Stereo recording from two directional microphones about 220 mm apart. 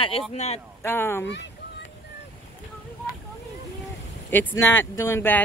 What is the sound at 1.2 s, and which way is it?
Speech, 50° left (ahead or behind).